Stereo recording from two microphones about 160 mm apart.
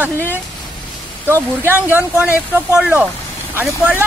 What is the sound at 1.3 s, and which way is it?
Speech, 15° right (ahead or behind).